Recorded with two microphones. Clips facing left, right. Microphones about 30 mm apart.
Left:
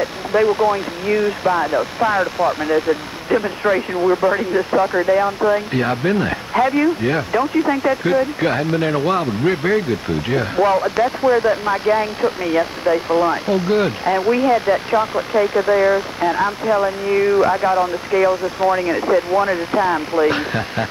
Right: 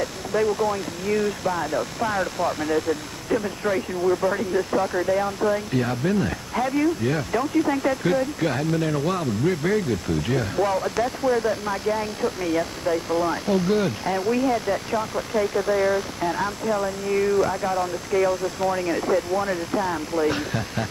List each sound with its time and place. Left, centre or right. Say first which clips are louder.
0.0 s speech: left 6 dB; left